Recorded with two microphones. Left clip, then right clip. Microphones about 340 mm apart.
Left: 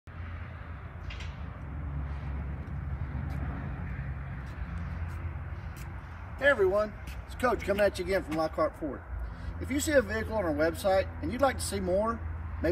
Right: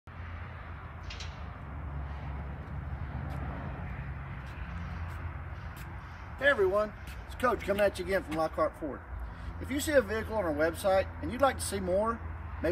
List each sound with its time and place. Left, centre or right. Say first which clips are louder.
6.4 s speech: left 1 dB; centre